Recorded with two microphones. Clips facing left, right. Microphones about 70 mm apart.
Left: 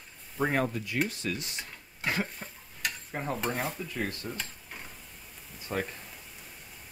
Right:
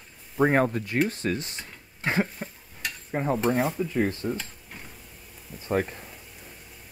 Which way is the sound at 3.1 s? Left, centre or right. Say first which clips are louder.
Right 9 dB; centre.